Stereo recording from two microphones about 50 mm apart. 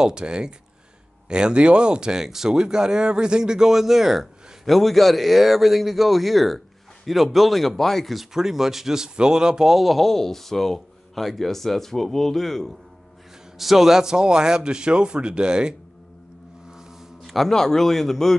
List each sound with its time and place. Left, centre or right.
0.0 s speech: centre
9.8 s speech: centre
17.2 s speech: centre